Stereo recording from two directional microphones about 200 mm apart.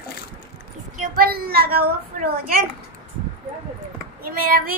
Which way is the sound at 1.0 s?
50° right (ahead or behind).